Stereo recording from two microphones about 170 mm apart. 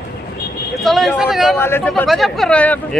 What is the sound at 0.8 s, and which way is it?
Speech, centre (ahead or behind).